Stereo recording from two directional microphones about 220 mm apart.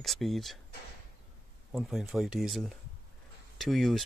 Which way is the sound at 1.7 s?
Centre (ahead or behind).